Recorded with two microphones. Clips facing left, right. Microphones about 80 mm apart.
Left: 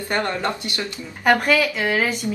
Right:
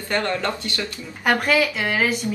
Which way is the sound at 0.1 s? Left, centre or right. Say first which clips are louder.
Even; left.